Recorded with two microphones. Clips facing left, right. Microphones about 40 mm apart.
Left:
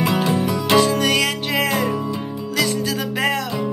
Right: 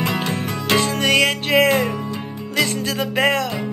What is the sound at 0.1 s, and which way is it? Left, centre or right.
Music, right.